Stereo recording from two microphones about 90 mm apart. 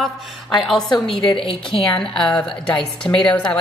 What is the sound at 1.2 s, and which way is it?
Speech, 80° left.